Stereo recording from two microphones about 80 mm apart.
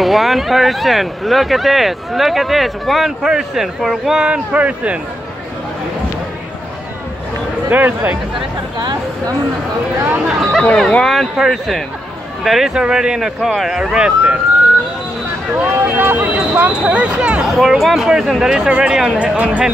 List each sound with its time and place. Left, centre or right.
0.0 s speech: centre
7.7 s speech: right
10.0 s speech: right
10.9 s speech: centre
15.5 s speech: right
17.5 s speech: centre